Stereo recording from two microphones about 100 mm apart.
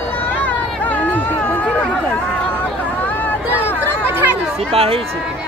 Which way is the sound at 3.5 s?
20° right (ahead or behind).